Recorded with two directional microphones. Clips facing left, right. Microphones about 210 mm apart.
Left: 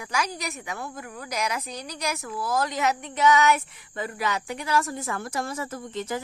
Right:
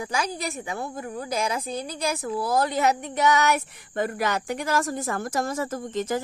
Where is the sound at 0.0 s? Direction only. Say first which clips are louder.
Right 2 dB; 30° right (ahead or behind).